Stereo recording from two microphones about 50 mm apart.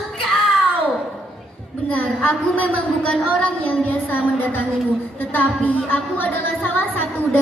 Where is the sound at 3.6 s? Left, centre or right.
Left.